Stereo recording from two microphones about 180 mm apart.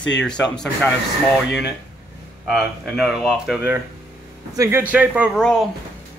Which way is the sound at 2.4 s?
Centre (ahead or behind).